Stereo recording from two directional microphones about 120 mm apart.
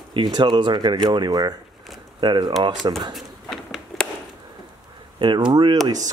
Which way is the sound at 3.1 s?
Centre (ahead or behind).